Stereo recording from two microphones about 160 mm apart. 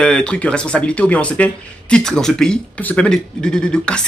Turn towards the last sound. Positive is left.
turn(degrees=5)  # may be behind; listen again after turning